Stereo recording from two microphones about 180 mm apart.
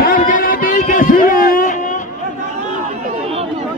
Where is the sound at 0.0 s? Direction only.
50° left (ahead or behind).